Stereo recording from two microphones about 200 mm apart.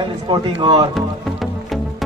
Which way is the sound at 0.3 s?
25° right (ahead or behind).